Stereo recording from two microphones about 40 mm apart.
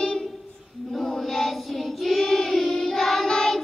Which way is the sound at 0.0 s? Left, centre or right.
Centre.